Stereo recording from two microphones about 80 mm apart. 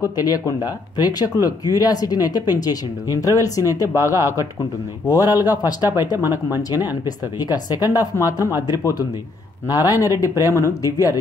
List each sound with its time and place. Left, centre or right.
0.0 s speech: left
5.1 s speech: left
5.8 s speech: right
7.1 s speech: left
9.7 s speech: left